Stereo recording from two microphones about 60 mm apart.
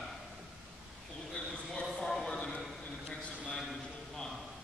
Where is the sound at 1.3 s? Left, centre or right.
Centre.